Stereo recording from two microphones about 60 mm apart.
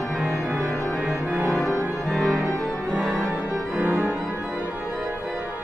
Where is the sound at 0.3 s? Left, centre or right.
Right.